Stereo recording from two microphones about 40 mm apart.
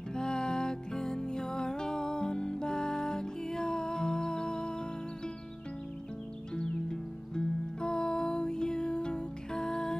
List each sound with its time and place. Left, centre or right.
0.1 s music: centre
6.5 s music: left